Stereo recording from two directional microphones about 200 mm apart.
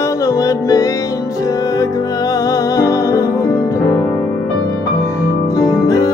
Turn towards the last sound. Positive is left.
turn(degrees=15)  # may be behind; listen again after turning